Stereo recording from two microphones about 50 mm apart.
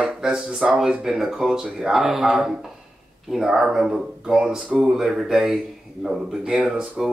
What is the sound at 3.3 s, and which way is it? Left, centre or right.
Speech, centre.